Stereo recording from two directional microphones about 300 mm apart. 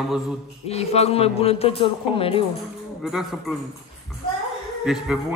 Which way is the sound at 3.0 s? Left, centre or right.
Centre.